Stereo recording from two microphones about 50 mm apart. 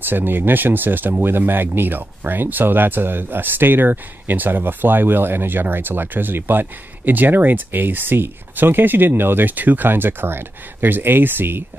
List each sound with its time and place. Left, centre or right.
0.0 s speech: right